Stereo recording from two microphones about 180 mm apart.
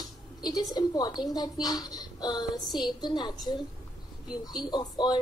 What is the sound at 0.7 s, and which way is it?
A woman's voice, 20° left (ahead or behind).